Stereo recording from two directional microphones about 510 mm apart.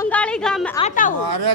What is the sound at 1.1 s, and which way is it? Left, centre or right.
Speech, right.